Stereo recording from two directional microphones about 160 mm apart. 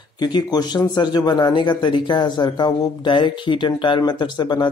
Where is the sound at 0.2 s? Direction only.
25° left (ahead or behind).